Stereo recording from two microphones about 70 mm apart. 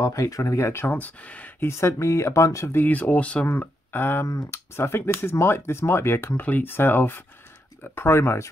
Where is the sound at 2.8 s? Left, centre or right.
Left.